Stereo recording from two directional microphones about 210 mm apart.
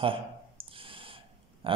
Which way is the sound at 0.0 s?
25° right (ahead or behind).